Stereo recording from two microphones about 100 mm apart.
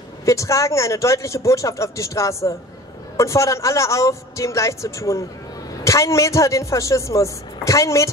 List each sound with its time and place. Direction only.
0.2 s speech: 30° left (ahead or behind)